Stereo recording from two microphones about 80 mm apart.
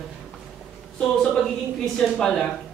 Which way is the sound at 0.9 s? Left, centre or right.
Centre.